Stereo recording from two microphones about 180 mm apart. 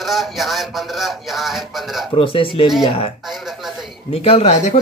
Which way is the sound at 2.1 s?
30° left (ahead or behind).